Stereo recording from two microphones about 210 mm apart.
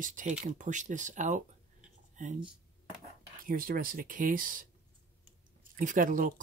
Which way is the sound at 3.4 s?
45° right (ahead or behind).